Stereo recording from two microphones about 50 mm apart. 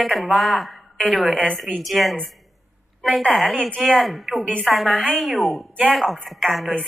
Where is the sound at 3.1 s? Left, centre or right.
Centre.